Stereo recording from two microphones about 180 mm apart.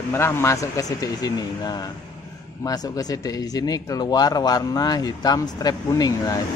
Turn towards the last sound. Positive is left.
turn(degrees=20)  # may be behind; listen again after turning